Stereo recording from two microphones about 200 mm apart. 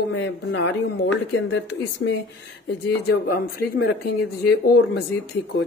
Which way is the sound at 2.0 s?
60° left (ahead or behind).